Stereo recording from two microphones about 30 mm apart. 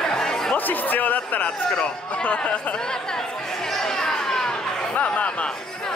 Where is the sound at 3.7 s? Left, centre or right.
Centre.